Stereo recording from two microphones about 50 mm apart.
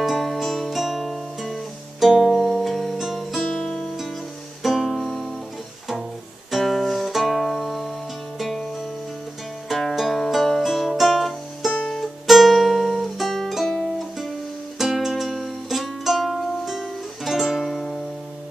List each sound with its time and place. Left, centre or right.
0.2 s music: centre
3.5 s music: left
4.6 s music: centre
6.5 s music: centre
9.7 s music: centre